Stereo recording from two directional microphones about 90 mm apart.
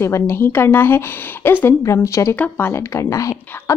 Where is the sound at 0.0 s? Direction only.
25° left (ahead or behind).